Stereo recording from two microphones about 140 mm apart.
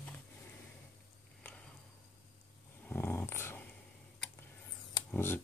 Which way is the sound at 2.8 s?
15° left (ahead or behind).